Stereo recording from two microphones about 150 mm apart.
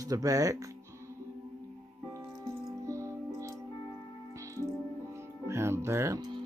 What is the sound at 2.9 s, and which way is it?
Music, 20° right (ahead or behind).